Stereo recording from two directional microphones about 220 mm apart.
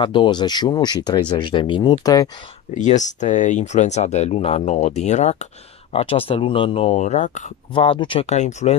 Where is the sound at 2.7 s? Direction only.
35° left (ahead or behind).